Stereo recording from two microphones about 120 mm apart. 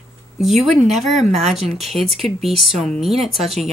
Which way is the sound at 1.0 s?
70° right (ahead or behind).